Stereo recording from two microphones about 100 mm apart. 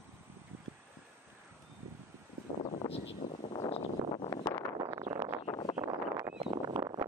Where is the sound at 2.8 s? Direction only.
30° left (ahead or behind).